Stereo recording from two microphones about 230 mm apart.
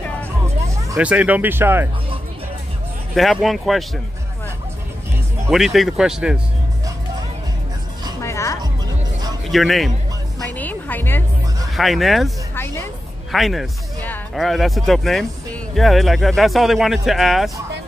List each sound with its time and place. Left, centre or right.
0.9 s speech: centre
3.2 s speech: centre
5.5 s speech: centre
8.2 s music: centre
9.5 s speech: centre
10.5 s music: centre
11.7 s speech: centre
12.6 s music: centre
13.3 s speech: centre